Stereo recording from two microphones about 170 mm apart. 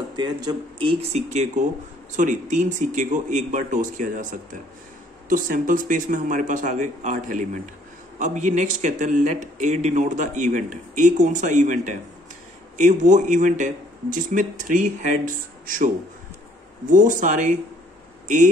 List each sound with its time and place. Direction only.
0.1 s speech: 25° right (ahead or behind); by 15.9 s 50° right (ahead or behind)
16.9 s speech: 50° right (ahead or behind)